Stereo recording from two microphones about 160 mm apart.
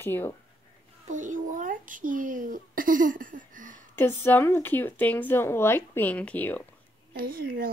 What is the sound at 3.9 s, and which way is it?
A woman's voice, 10° left (ahead or behind).